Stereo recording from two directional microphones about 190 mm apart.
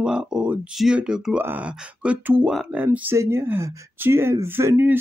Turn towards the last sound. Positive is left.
turn(degrees=-10)  # may be behind; listen again after turning